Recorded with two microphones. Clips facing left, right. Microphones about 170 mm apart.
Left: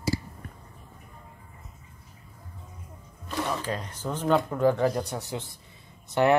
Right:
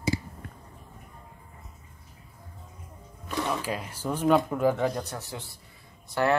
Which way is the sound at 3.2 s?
10° right (ahead or behind).